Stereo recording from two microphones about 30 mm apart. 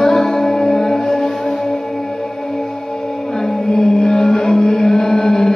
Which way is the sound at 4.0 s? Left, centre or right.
Left.